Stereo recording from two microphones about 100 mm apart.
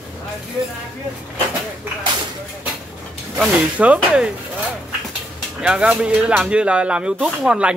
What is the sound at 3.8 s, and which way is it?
Speech, 10° right (ahead or behind).